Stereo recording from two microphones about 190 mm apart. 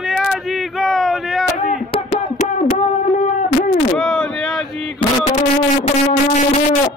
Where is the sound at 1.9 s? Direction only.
40° left (ahead or behind).